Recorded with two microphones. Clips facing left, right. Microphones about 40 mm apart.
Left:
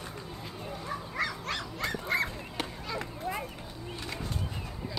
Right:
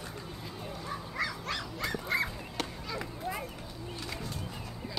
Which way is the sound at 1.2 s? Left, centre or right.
Left.